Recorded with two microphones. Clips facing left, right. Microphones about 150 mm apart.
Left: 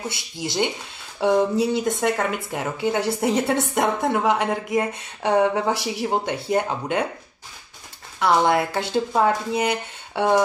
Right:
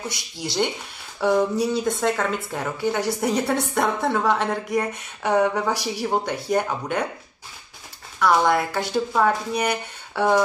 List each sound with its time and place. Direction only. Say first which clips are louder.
0.1 s a woman's voice: left 1 dB; 20° left (ahead or behind)
8.2 s a woman's voice: even; 20° left (ahead or behind)